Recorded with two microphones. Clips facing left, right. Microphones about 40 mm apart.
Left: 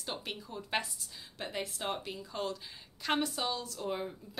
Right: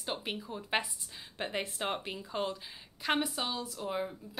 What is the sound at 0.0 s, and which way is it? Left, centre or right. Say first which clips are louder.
A woman's voice: right 3 dB; centre.